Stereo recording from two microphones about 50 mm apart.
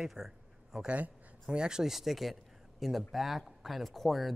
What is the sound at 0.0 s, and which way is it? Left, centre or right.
Speech, centre.